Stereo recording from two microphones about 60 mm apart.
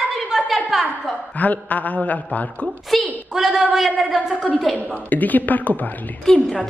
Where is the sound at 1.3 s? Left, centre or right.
Left.